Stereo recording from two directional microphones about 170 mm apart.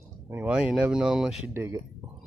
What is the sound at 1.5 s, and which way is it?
Speech, 15° right (ahead or behind).